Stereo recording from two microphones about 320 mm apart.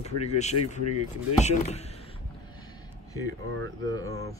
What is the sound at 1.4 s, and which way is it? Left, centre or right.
Speech, left.